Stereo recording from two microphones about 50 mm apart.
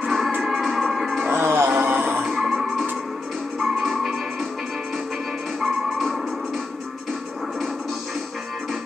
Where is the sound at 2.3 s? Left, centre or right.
Centre.